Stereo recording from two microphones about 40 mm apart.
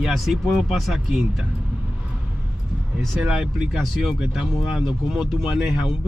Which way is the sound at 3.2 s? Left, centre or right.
Right.